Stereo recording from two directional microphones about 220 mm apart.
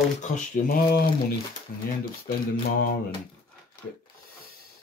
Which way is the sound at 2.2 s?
40° left (ahead or behind).